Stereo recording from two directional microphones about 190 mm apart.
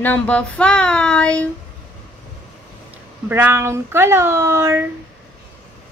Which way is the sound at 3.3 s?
10° right (ahead or behind).